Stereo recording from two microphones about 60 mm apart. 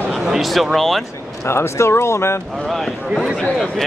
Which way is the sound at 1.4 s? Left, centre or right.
Left.